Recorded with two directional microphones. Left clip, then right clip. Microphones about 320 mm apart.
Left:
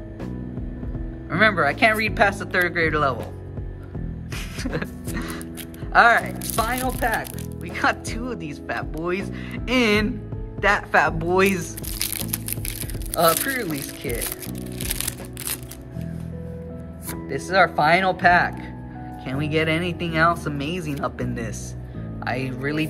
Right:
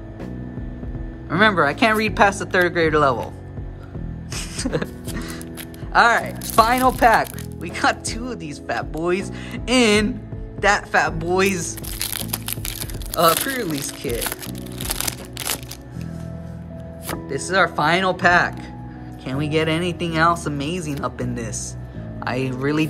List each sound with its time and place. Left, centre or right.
1.3 s a woman's voice: centre
4.3 s music: centre
5.9 s speech: centre
14.0 s music: centre
17.3 s a woman's voice: centre